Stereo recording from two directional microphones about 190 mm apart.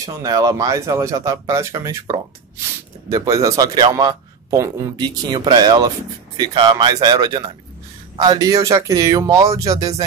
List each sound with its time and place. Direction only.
0.0 s a man's voice: 20° right (ahead or behind)